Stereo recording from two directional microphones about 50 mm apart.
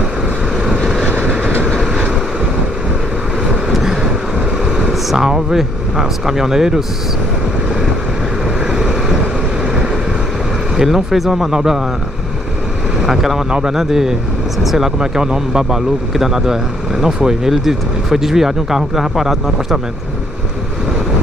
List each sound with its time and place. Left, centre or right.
1.0 s train: right
3.7 s vehicle: centre
4.6 s speech: centre
8.6 s vehicle: centre
10.8 s speech: centre
13.0 s speech: centre
13.5 s a man's voice: centre
15.0 s speech: centre